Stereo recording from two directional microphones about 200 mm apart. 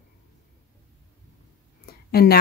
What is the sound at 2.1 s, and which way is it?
Speech, 50° left (ahead or behind).